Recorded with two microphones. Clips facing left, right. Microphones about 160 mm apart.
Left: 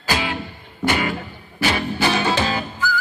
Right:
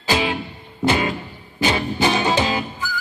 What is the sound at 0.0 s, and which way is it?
Music, 20° right (ahead or behind).